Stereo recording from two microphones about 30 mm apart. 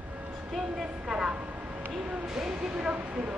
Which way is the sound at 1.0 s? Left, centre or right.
Right.